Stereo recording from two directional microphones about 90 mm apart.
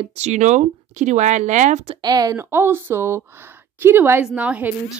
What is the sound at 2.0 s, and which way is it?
Speech, 45° right (ahead or behind).